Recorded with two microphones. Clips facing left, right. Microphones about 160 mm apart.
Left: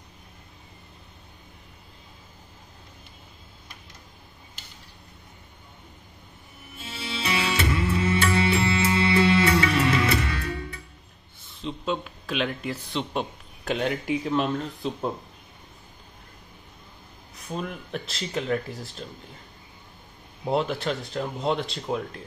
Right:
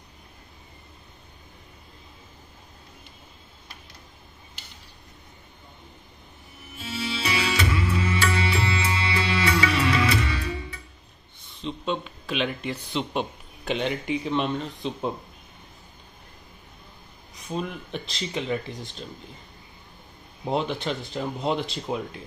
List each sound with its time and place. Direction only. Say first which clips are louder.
7.2 s music: left 1 dB; 45° left (ahead or behind)
11.6 s speech: even; centre (ahead or behind)
17.5 s speech: right 1 dB; centre (ahead or behind)
20.4 s speech: left 1 dB; centre (ahead or behind)